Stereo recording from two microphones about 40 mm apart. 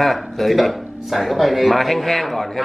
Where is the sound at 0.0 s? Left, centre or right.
Centre.